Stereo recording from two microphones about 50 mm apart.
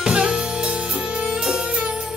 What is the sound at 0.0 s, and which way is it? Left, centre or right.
Music, centre.